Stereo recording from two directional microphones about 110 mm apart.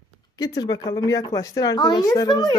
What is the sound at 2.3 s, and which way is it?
Speech, 45° left (ahead or behind).